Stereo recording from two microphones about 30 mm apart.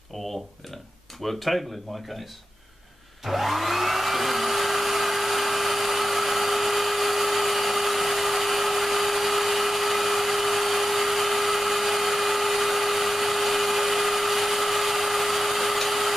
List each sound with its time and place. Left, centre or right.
1.2 s speech: centre
3.3 s hair dryer: centre